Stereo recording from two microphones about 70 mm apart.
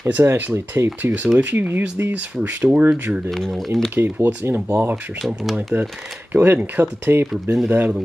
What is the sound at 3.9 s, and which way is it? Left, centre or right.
Speech, right.